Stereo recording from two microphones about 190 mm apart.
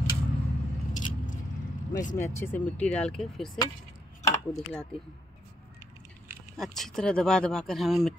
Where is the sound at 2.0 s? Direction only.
40° left (ahead or behind).